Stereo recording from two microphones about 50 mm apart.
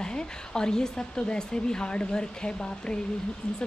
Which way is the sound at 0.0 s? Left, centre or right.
Centre.